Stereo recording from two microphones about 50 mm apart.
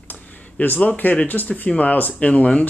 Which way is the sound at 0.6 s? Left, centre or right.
Left.